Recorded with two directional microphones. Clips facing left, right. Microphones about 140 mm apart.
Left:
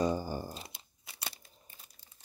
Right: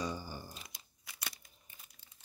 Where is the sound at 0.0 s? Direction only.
45° left (ahead or behind).